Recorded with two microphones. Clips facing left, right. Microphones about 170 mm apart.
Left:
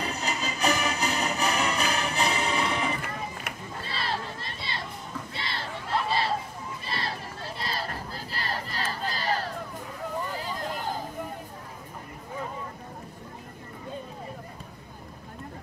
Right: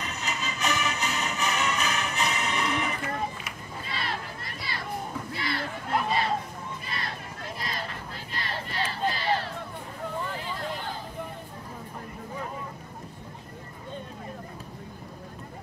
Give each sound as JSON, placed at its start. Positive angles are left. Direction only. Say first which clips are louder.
{"t": 0.0, "sound": "music", "louder": "left 3 dB", "side_deg": 35}
{"t": 3.8, "sound": "a sound", "louder": "left 2 dB", "side_deg": 30}
{"t": 6.9, "sound": "crowd", "louder": "left 6 dB", "side_deg": 30}
{"t": 10.4, "sound": "vehicle", "louder": "left 1 dB", "side_deg": 40}